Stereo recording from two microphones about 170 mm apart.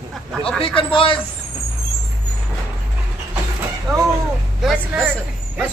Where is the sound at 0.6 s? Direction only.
30° left (ahead or behind).